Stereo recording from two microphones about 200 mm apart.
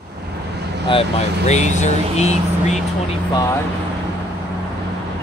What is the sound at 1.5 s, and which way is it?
Speech, 35° left (ahead or behind).